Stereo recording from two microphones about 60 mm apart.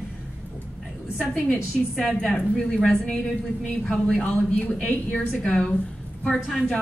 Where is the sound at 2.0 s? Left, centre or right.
Centre.